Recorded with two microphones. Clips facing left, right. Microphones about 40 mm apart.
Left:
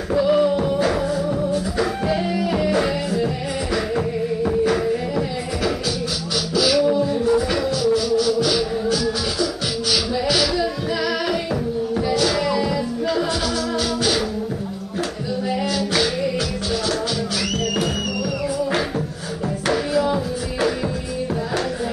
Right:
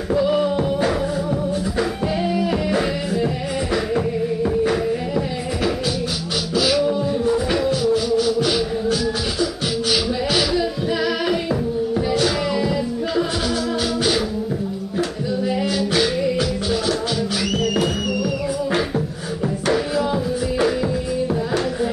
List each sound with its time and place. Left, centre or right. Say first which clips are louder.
0.1 s music: left 1 dB; centre
4.6 s music: even; centre
10.5 s singing: right 1 dB; centre
12.1 s music: even; right
15.0 s music: right 2 dB; centre
17.7 s music: right 2 dB; centre